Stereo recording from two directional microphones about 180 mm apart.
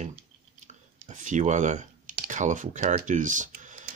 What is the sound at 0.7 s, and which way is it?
Speech, 40° right (ahead or behind).